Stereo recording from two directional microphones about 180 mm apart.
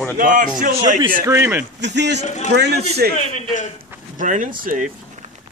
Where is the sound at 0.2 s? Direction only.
50° right (ahead or behind).